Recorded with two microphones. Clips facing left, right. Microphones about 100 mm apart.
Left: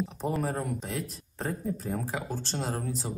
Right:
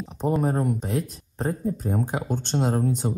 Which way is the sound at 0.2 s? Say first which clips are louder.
Right 9 dB; 35° right (ahead or behind).